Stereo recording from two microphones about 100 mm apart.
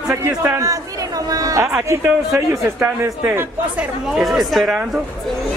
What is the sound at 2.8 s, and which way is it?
Speech, 20° right (ahead or behind).